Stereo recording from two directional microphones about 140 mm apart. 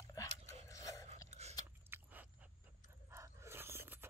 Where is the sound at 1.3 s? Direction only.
50° right (ahead or behind).